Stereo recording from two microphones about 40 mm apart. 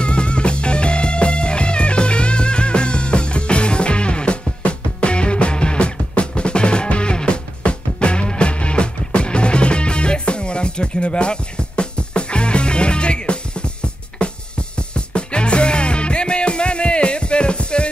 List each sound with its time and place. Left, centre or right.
0.0 s music: left
15.0 s music: left